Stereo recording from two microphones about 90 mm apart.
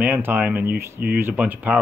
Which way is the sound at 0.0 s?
20° right (ahead or behind).